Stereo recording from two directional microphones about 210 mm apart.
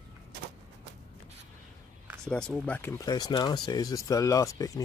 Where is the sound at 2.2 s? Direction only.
5° left (ahead or behind).